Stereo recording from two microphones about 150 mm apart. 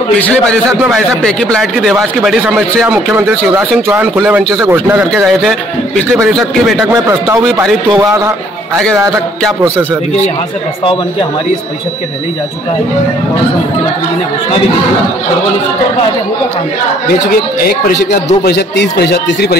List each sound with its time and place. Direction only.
0.2 s a man's voice: 10° left (ahead or behind); by 4.1 s 10° right (ahead or behind)
4.4 s speech: centre (ahead or behind)
4.6 s speech: 15° right (ahead or behind)
5.1 s a man's voice: centre (ahead or behind)
6.9 s speech: 20° right (ahead or behind)
7.5 s speech: 5° right (ahead or behind)
17.6 s a man's voice: 80° left